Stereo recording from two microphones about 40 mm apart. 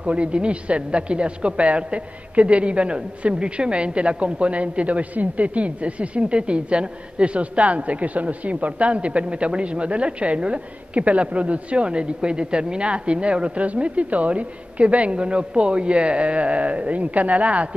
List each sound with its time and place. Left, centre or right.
0.0 s a woman's voice: right